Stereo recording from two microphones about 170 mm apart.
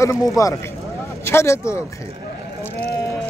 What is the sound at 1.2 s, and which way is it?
Speech, 15° left (ahead or behind).